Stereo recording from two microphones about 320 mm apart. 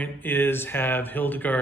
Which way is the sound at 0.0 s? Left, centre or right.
Centre.